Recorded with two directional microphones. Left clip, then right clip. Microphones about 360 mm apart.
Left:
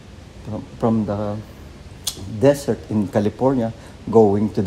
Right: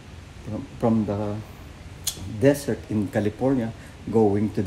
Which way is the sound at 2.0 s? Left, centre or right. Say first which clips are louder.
Left 4 dB; centre.